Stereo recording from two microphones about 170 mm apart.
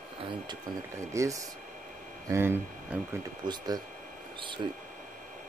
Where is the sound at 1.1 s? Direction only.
20° right (ahead or behind).